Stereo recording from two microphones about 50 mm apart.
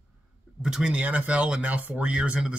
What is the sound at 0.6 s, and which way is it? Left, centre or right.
Speech, centre.